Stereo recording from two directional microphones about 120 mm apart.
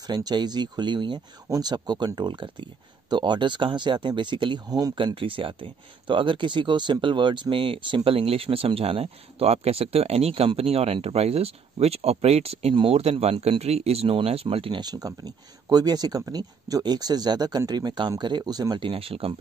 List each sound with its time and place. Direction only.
0.0 s speech: 35° right (ahead or behind); by 19.3 s 50° right (ahead or behind)